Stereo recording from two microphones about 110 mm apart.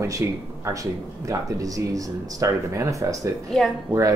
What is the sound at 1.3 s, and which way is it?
Speech, 30° right (ahead or behind).